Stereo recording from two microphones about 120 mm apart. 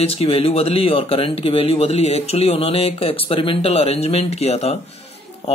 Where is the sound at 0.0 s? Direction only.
55° left (ahead or behind).